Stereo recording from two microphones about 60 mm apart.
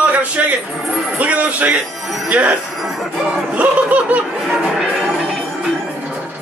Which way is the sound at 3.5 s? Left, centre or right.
Right.